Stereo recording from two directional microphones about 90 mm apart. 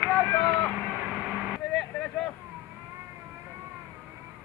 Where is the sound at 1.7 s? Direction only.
5° left (ahead or behind).